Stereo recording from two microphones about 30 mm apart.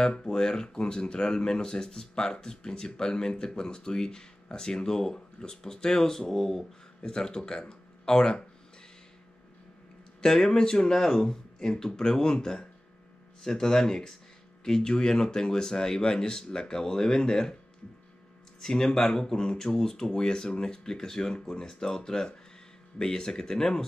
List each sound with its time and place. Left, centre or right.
0.0 s speech: left
10.2 s speech: left
18.6 s speech: left